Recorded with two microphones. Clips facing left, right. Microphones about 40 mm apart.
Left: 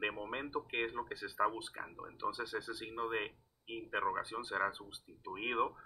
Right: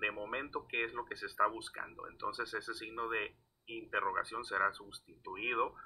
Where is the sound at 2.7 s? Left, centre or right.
Centre.